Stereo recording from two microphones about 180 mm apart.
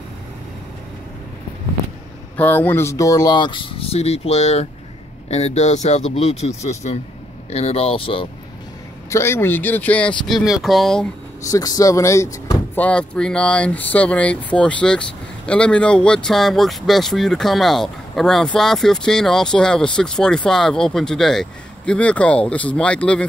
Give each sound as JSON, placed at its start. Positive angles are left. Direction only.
{"t": 2.3, "sound": "speech", "side_deg": 10}
{"t": 9.1, "sound": "speech", "side_deg": 15}
{"t": 11.4, "sound": "speech", "side_deg": 20}